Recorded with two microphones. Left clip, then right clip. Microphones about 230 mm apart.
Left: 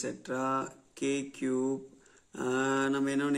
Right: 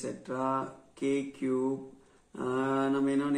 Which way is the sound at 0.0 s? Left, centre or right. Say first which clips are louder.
Even; left.